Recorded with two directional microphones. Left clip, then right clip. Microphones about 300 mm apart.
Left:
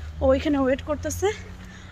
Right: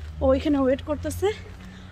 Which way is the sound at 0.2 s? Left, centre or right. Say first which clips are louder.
Even; centre.